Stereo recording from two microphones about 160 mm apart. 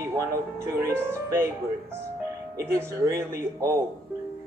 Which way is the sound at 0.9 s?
15° right (ahead or behind).